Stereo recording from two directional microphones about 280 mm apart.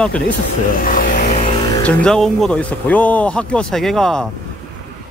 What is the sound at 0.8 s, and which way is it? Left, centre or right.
Vehicle, left.